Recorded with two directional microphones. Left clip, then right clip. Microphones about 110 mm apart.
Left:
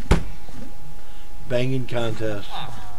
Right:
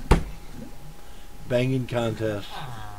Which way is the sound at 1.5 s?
15° right (ahead or behind).